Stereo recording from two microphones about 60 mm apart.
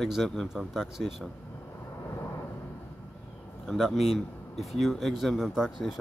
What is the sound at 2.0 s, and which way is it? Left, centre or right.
Vehicle, left.